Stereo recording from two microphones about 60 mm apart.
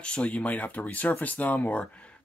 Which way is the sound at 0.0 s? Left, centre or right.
Centre.